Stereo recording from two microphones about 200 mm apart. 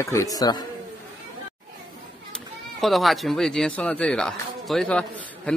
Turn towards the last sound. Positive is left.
turn(degrees=5)  # may be behind; listen again after turning